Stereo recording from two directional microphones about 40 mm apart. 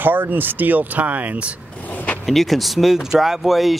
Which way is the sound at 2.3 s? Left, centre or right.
Centre.